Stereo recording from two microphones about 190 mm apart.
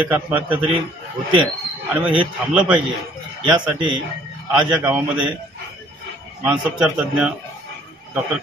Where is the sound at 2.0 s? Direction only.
5° right (ahead or behind).